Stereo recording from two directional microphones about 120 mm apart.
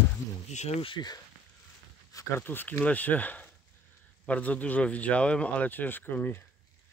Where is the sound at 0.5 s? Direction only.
65° left (ahead or behind).